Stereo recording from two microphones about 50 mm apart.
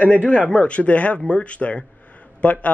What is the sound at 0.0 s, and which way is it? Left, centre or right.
Speech, left.